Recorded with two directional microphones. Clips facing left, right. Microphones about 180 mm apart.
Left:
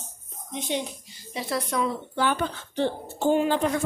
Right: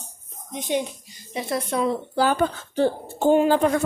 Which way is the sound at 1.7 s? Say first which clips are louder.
Right 4 dB; 35° right (ahead or behind).